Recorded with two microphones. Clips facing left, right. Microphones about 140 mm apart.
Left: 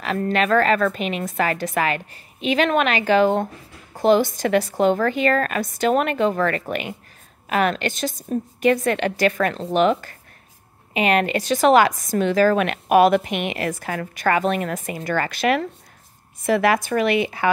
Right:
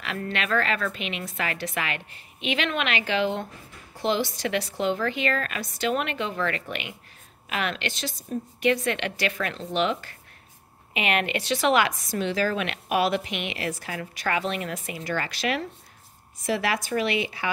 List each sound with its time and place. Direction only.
0.0 s a woman's voice: 40° left (ahead or behind)